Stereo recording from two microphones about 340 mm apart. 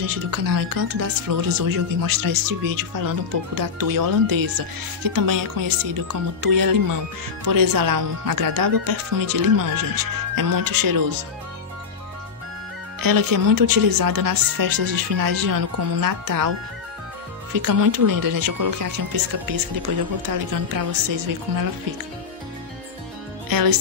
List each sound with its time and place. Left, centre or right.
0.0 s speech: right
13.0 s speech: right
17.6 s speech: right
23.5 s speech: right